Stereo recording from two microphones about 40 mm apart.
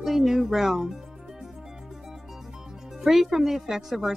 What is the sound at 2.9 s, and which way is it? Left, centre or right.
Speech, centre.